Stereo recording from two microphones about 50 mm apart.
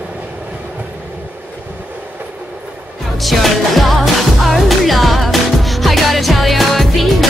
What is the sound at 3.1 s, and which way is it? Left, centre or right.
Music, centre.